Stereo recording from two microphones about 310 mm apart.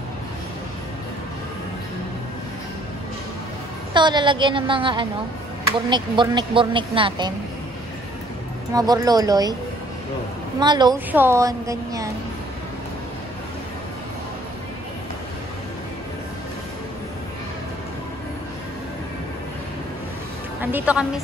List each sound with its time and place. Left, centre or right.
3.9 s speech: centre
8.7 s speech: centre
10.6 s speech: centre
20.6 s a woman's voice: centre